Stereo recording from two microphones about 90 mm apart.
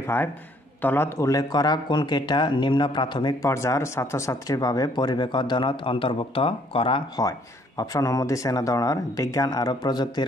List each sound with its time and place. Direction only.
0.0 s a man's voice: 20° left (ahead or behind)
1.3 s a man's voice: 50° left (ahead or behind)
3.4 s speech: 30° left (ahead or behind); by 7.0 s 90° left
7.2 s speech: 45° left (ahead or behind)